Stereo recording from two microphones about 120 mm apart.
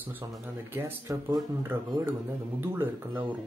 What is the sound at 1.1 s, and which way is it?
Speech, 30° right (ahead or behind).